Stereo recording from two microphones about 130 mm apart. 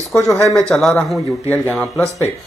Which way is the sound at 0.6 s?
5° left (ahead or behind).